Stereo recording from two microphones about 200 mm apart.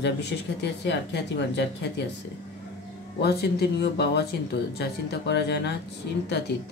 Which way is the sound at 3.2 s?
55° left (ahead or behind).